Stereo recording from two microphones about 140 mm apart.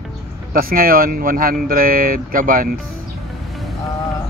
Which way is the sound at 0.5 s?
90° right.